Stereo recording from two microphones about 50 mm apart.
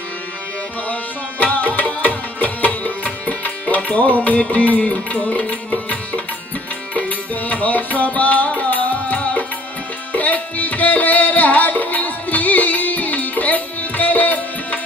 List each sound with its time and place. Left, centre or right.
1.4 s music: left